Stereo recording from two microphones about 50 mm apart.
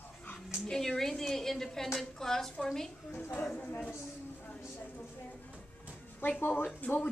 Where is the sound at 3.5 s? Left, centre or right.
Left.